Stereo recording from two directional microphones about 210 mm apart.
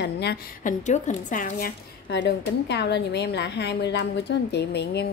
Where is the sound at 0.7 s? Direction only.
35° left (ahead or behind).